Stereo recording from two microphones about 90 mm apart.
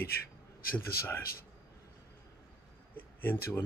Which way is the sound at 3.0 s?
20° left (ahead or behind).